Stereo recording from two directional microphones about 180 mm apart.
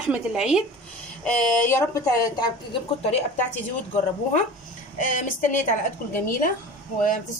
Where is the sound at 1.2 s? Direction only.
5° left (ahead or behind); by 3.2 s 35° left (ahead or behind).